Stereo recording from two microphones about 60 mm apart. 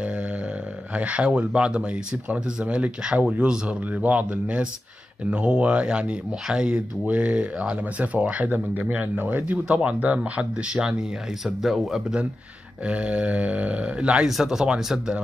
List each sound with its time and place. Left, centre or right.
0.9 s speech: right; by 12.0 s centre
12.8 s speech: centre
14.2 s speech: centre